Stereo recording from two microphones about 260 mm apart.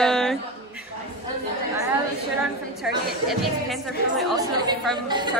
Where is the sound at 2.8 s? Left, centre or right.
Centre.